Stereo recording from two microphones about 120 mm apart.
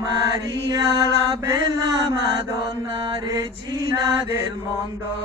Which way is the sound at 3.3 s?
30° right (ahead or behind).